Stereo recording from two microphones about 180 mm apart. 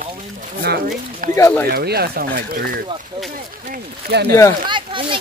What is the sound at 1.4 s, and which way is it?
Speech, 15° left (ahead or behind).